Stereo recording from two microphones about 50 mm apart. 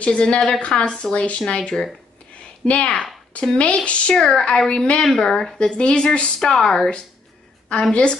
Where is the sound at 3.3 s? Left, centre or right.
Left.